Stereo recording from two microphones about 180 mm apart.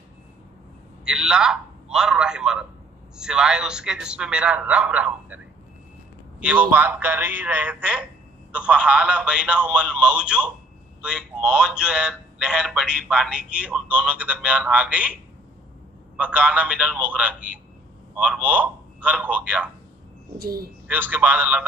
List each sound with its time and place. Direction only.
1.0 s a man's voice: 5° right (ahead or behind)
6.4 s a man's voice: 10° right (ahead or behind)
16.2 s a man's voice: 5° right (ahead or behind)
20.3 s speech: 55° right (ahead or behind)
20.8 s a man's voice: 10° right (ahead or behind)